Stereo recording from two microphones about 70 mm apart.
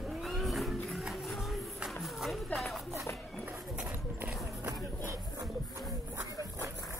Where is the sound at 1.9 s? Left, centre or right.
Centre.